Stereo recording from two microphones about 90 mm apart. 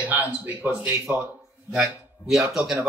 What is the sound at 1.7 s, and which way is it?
Speech, 10° right (ahead or behind).